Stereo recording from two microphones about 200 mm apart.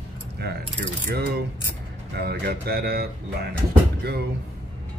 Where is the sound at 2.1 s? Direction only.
55° right (ahead or behind).